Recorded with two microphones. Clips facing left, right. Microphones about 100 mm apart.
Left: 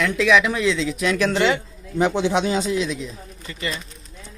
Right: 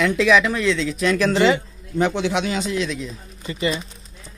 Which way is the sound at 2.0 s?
15° left (ahead or behind).